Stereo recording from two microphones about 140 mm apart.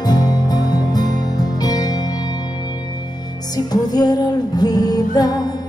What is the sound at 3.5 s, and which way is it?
Music, 30° left (ahead or behind).